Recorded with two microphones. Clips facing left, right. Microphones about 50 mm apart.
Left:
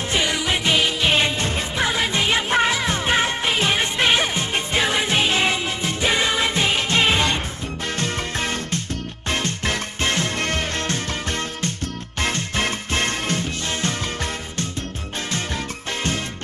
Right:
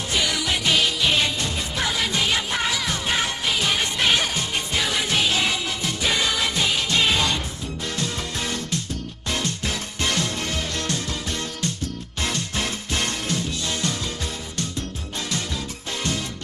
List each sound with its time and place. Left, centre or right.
0.1 s music: left